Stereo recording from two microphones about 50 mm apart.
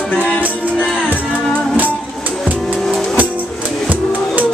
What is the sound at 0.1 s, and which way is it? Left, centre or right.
Music, left.